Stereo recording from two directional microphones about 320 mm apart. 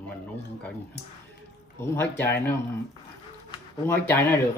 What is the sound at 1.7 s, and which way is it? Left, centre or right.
Speech, centre.